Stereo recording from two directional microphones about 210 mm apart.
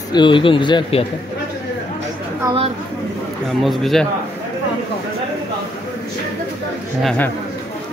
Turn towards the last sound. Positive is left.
turn(degrees=0)  # may be behind; listen again after turning